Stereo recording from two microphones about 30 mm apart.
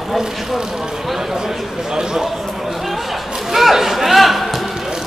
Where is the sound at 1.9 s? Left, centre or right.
Centre.